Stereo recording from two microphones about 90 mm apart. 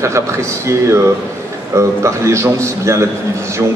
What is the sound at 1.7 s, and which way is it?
A man's voice, 35° right (ahead or behind).